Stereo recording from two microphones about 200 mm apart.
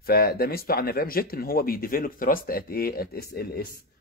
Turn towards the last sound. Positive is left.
turn(degrees=50)  # may be behind; listen again after turning